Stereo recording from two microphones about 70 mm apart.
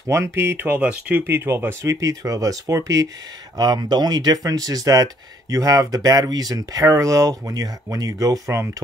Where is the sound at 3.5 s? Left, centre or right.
Right.